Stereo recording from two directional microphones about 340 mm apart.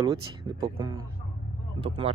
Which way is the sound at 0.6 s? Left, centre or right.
Centre.